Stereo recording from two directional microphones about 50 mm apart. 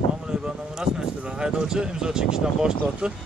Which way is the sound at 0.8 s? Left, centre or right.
Centre.